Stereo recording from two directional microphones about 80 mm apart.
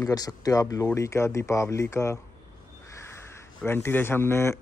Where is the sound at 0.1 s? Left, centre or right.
Left.